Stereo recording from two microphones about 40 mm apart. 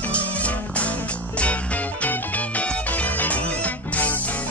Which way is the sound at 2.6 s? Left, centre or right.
Left.